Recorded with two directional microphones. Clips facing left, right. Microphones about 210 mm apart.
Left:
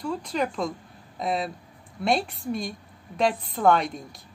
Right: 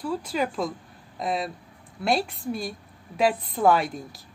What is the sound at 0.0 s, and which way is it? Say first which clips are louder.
A woman's voice: even; 5° right (ahead or behind).